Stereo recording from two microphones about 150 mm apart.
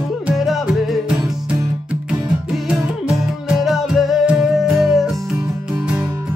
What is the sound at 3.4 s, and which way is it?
Music, centre (ahead or behind).